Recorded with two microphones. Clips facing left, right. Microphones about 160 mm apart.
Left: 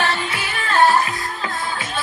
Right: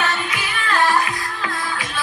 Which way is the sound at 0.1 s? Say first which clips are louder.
Left 1 dB; 30° left (ahead or behind).